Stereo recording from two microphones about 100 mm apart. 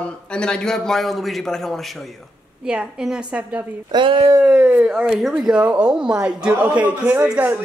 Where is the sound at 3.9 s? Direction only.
55° right (ahead or behind).